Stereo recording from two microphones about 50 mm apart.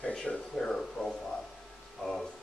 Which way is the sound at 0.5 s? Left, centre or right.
Centre.